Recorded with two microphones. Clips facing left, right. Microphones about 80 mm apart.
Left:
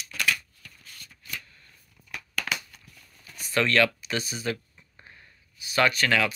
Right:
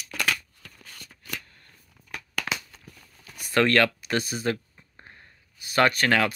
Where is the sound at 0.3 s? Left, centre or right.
Right.